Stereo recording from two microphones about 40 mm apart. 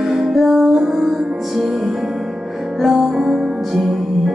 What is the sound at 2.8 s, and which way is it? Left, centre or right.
Music, centre.